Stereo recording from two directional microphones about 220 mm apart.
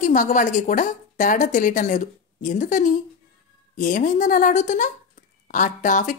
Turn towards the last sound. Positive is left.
turn(degrees=35)  # may be behind; listen again after turning